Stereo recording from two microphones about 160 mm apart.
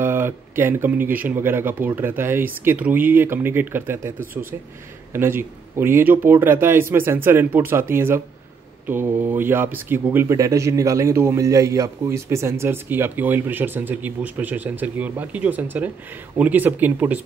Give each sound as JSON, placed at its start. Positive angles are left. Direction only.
{"t": 0.0, "sound": "speech", "side_deg": -15}
{"t": 4.2, "sound": "speech", "side_deg": -65}
{"t": 5.1, "sound": "speech", "side_deg": -15}